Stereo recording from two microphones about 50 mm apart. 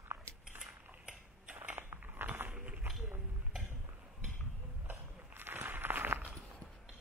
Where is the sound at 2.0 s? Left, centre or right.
Right.